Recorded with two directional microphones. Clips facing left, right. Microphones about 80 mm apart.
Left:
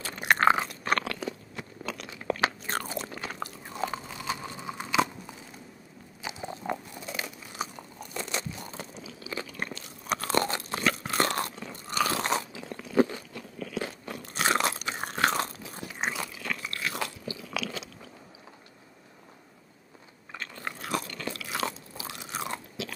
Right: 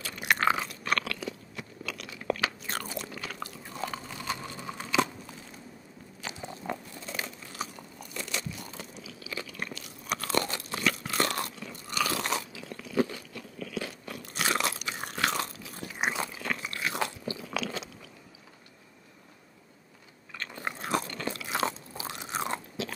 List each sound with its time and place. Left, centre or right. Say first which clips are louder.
0.0 s chewing: left 4 dB; left
3.9 s biting: left 1 dB; centre
4.6 s a sound: left 1 dB; centre
6.2 s biting: left 3 dB; centre
13.6 s crunch: left 2 dB; left
16.1 s biting: right 3 dB; right
17.3 s crunch: right 1 dB; right
20.6 s crunch: right 2 dB; right